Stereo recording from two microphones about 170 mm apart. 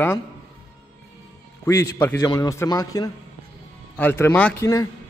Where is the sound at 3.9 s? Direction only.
10° left (ahead or behind).